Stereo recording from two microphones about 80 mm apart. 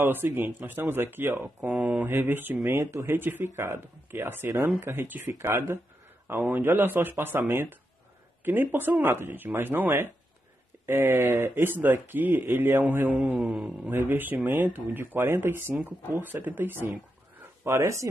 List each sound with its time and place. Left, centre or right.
0.0 s speech: right
13.4 s speech: centre
13.8 s speech: right
17.6 s speech: right